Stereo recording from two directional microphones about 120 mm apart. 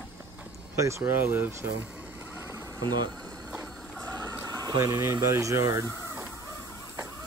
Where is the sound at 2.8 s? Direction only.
35° right (ahead or behind).